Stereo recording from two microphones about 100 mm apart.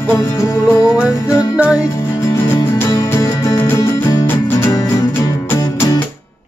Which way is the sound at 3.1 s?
40° left (ahead or behind).